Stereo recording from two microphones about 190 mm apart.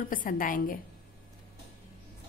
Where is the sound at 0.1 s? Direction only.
45° left (ahead or behind).